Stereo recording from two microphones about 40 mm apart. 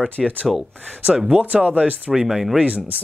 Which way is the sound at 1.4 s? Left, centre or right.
Right.